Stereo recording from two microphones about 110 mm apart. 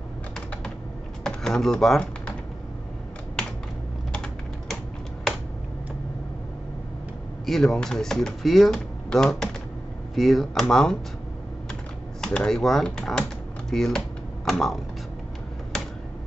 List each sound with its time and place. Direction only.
1.2 s typing: 5° left (ahead or behind)
4.1 s typing: 10° left (ahead or behind)
7.4 s speech: centre (ahead or behind)
12.2 s speech: 5° left (ahead or behind)